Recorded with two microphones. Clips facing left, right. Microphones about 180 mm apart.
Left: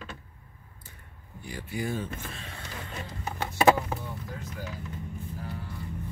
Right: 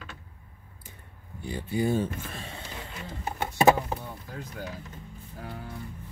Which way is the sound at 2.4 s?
25° right (ahead or behind).